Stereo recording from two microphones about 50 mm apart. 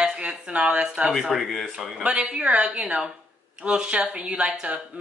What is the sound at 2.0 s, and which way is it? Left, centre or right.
Speech, right.